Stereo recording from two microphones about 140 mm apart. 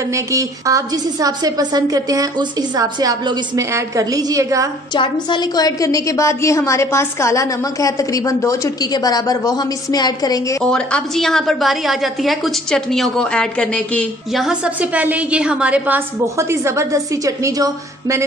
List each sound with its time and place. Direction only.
0.1 s a woman's voice: 25° right (ahead or behind)
4.9 s a woman's voice: 35° left (ahead or behind)
10.6 s a woman's voice: 5° left (ahead or behind)
16.3 s a woman's voice: 20° right (ahead or behind)